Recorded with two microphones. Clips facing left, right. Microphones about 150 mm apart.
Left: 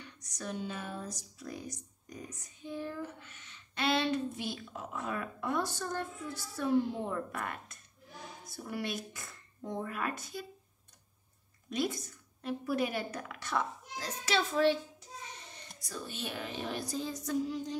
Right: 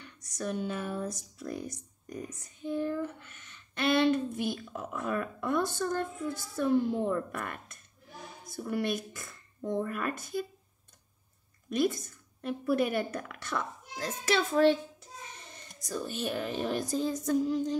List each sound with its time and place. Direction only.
0.0 s music: 50° right (ahead or behind)
1.4 s speech: 50° right (ahead or behind)
11.7 s a woman's voice: 50° right (ahead or behind)